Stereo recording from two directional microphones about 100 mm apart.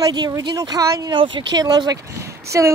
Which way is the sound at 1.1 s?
55° right (ahead or behind).